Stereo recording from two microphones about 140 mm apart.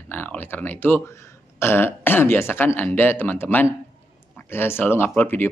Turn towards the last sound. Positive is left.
turn(degrees=15)  # may be behind; listen again after turning